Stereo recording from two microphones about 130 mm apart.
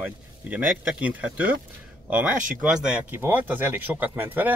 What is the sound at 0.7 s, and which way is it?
Speech, 5° right (ahead or behind).